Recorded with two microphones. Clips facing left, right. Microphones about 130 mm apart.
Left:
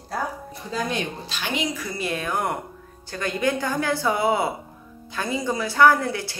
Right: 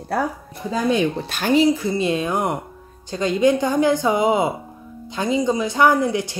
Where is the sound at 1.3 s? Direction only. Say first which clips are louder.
Right 13 dB; 40° right (ahead or behind).